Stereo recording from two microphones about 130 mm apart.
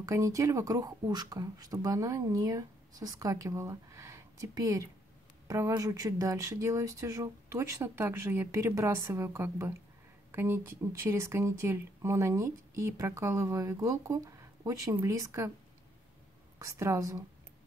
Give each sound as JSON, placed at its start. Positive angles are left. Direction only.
{"t": 0.0, "sound": "speech", "side_deg": -25}
{"t": 16.5, "sound": "speech", "side_deg": -25}